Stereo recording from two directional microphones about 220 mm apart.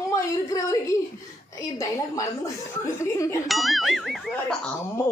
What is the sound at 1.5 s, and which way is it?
A woman's voice, 15° left (ahead or behind).